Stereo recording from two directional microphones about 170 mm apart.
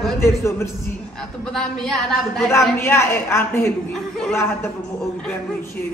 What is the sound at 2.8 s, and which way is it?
Speech, 15° left (ahead or behind).